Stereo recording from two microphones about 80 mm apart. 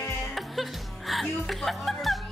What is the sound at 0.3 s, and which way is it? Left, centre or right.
Music, centre.